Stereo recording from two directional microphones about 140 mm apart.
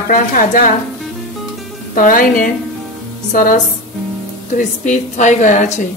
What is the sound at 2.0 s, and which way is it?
A woman's voice, 75° left (ahead or behind).